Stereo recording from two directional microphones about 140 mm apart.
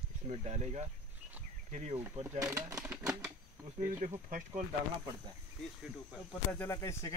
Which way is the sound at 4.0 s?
60° right (ahead or behind).